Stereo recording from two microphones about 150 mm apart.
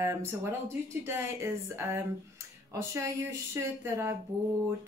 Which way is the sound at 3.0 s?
20° right (ahead or behind).